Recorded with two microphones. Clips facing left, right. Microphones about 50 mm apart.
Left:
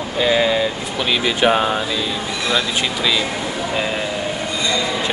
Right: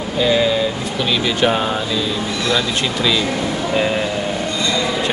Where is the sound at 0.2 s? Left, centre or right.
Centre.